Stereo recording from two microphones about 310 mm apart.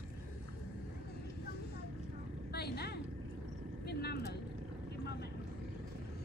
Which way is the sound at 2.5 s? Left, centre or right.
Left.